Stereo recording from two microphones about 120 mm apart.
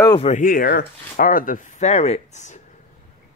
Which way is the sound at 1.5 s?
90° left.